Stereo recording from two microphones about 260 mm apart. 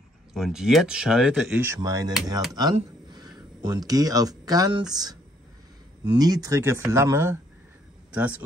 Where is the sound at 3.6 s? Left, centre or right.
Centre.